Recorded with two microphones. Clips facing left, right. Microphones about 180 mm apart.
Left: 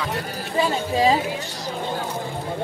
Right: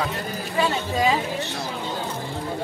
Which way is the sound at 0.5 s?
30° left (ahead or behind).